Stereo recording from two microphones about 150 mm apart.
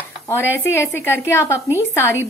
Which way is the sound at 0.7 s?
15° left (ahead or behind).